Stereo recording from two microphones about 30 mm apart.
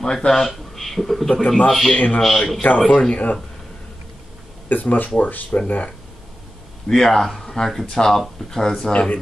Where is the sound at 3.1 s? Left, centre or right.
Left.